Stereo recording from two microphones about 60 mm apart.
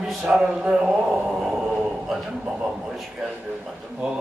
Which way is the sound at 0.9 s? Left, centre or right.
Centre.